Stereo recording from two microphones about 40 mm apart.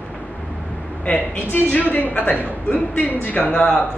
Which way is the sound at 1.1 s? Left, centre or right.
Left.